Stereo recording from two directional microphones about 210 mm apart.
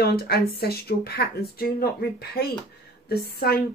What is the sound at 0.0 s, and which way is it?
Speech, 50° left (ahead or behind).